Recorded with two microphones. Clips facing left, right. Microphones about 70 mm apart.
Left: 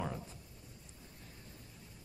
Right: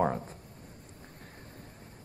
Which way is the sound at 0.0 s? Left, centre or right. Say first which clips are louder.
Right 12 dB; right.